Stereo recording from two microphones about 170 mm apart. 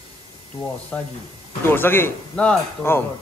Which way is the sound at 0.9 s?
5° left (ahead or behind).